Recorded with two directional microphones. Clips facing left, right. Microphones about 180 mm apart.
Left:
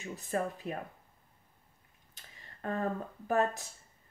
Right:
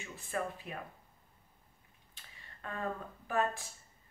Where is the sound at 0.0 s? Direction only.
40° left (ahead or behind).